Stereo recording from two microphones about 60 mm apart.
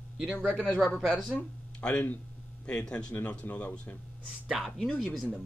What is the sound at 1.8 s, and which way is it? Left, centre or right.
A man's voice, centre.